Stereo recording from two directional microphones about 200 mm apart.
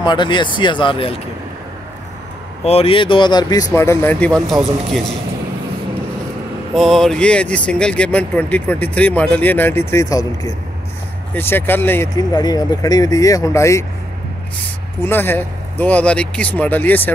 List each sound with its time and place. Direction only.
0.0 s speech: 20° left (ahead or behind)
2.6 s speech: 30° left (ahead or behind); by 4.6 s 5° left (ahead or behind)
6.7 s speech: centre (ahead or behind)
15.0 s speech: 10° left (ahead or behind)